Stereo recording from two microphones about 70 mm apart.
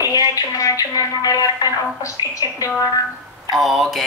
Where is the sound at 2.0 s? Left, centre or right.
Left.